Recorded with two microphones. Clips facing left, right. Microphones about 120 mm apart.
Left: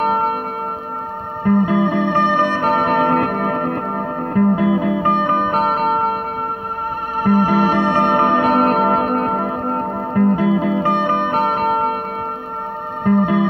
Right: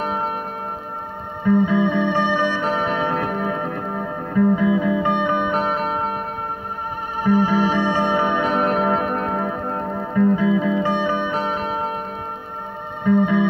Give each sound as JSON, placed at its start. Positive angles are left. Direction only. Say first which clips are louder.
{"t": 0.0, "sound": "tubular bells", "louder": "left 6 dB", "side_deg": 55}
{"t": 1.4, "sound": "music", "louder": "left 2 dB", "side_deg": 45}
{"t": 7.2, "sound": "music", "louder": "left 3 dB", "side_deg": 50}
{"t": 13.0, "sound": "music", "louder": "left 2 dB", "side_deg": 45}